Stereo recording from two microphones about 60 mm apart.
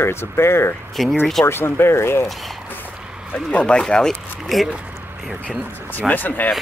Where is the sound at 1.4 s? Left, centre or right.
Left.